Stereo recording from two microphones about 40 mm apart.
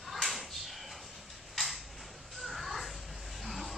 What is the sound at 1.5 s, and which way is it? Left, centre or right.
Tick-tock, centre.